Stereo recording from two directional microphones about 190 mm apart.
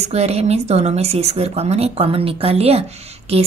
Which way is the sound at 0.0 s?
35° right (ahead or behind).